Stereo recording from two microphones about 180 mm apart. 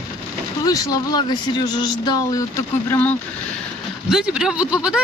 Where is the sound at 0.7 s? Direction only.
20° left (ahead or behind).